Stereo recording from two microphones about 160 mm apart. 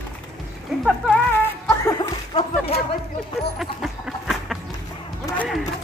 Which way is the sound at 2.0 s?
35° left (ahead or behind).